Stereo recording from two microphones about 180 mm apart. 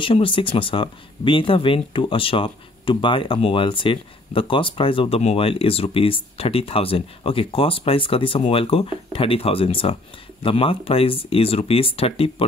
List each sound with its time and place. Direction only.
0.0 s speech: 30° left (ahead or behind)